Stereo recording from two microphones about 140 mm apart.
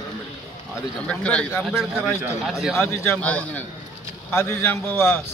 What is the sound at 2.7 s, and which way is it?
Speech, 20° left (ahead or behind).